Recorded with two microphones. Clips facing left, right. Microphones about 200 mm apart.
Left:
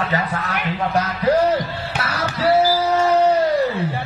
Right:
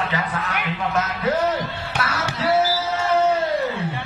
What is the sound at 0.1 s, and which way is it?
Speech, 35° left (ahead or behind).